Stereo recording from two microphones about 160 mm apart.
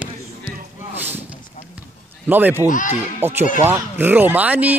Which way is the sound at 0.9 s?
10° right (ahead or behind).